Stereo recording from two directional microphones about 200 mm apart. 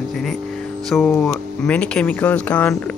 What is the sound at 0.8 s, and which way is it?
Speech, 5° left (ahead or behind).